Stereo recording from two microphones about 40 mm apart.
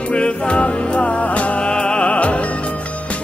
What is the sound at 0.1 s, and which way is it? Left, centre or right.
Music, left.